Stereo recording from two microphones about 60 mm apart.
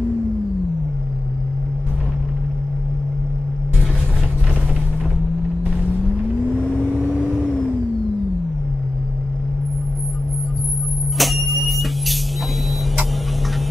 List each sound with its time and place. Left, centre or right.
6.5 s vehicle: left
7.2 s vehicle: centre
11.1 s music: centre